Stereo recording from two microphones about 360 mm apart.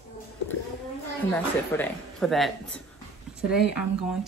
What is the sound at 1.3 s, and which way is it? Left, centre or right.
Speech, centre.